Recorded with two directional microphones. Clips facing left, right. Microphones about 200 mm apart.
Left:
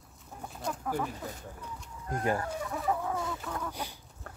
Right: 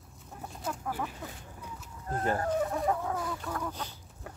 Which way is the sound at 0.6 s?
5° right (ahead or behind).